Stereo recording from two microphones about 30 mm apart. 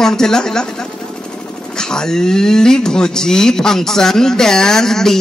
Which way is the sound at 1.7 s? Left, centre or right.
Left.